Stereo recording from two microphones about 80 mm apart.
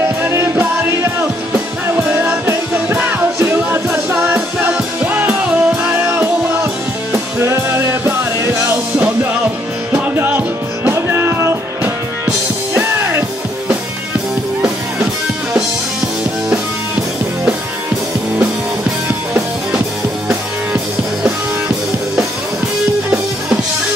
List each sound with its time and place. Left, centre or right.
0.2 s music: right
2.4 s music: right
5.0 s music: right
9.9 s music: right